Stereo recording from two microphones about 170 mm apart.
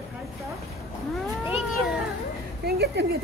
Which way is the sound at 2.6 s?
70° right (ahead or behind).